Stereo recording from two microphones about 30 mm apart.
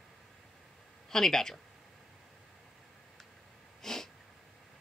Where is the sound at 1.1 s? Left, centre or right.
Centre.